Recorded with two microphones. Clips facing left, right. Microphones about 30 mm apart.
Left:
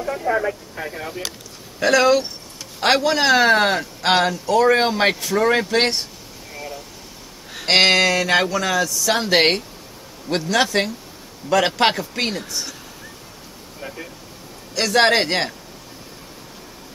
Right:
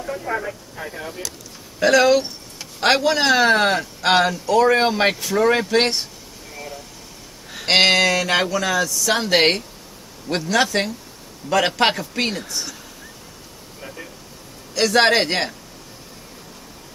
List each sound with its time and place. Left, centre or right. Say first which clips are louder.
0.0 s speech: left 4 dB; centre
1.8 s speech: right 1 dB; centre
6.5 s vehicle: left 2 dB; centre
7.5 s speech: even; centre
13.7 s vehicle: left 3 dB; centre
14.8 s speech: even; centre